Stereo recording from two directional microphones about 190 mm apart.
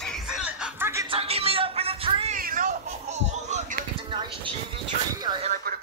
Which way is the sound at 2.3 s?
45° right (ahead or behind).